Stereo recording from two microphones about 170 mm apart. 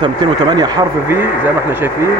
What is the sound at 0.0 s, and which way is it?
Speech, 25° right (ahead or behind).